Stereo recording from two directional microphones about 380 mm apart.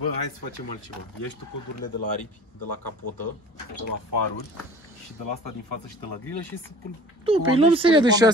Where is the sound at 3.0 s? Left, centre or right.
Left.